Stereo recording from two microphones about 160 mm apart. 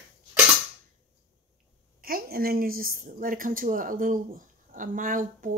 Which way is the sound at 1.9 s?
65° right (ahead or behind).